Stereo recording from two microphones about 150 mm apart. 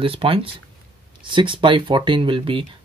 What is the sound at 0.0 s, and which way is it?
Speech, 35° right (ahead or behind).